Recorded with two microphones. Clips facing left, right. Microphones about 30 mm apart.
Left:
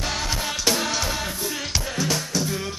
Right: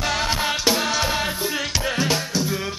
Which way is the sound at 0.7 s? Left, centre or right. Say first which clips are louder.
Right 1 dB; centre.